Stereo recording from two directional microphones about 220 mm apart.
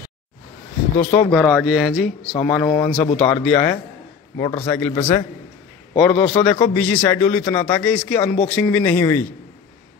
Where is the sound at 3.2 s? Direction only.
10° left (ahead or behind).